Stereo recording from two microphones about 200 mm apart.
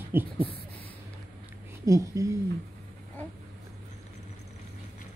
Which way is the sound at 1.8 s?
15° right (ahead or behind).